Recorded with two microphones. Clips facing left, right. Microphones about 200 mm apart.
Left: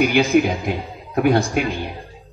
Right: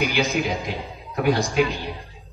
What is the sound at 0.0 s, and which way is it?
A man's voice, 55° left (ahead or behind).